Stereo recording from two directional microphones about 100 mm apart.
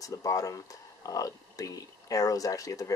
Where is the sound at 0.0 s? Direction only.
35° left (ahead or behind).